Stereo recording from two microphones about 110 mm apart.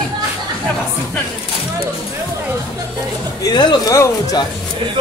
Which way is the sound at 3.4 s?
40° left (ahead or behind).